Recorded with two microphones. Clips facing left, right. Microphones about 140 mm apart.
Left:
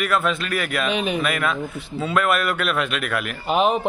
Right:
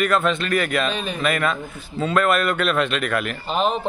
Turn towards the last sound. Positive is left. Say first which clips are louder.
# left 3 dB
turn(degrees=15)  # may be behind; listen again after turning